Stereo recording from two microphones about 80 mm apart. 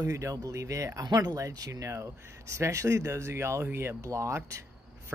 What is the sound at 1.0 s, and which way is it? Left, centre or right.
Speech, right.